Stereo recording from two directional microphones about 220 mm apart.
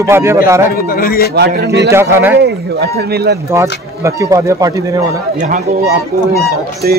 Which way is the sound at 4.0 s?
15° right (ahead or behind).